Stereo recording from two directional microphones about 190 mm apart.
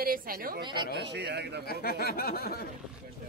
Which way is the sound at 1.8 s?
55° left (ahead or behind).